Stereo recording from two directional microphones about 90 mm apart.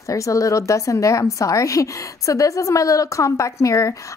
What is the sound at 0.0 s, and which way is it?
A woman's voice, 35° left (ahead or behind).